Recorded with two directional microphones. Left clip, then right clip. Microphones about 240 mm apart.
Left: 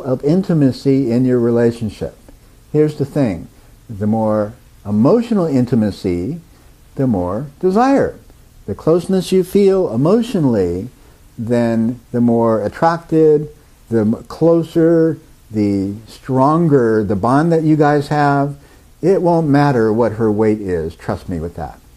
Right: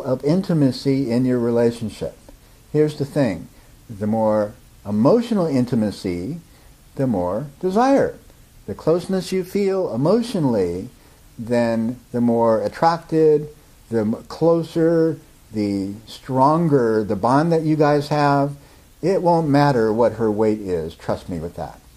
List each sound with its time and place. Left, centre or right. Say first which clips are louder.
0.0 s speech: left 4 dB; left